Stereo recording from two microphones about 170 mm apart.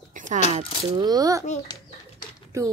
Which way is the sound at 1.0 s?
20° right (ahead or behind).